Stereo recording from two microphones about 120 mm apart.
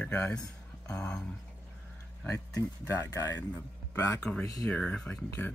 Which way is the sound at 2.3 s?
25° left (ahead or behind).